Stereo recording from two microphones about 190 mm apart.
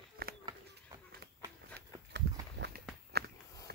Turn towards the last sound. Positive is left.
turn(degrees=-55)  # may be behind; listen again after turning